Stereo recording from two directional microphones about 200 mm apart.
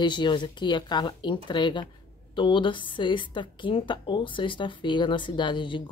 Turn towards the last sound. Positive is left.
turn(degrees=25)  # may be behind; listen again after turning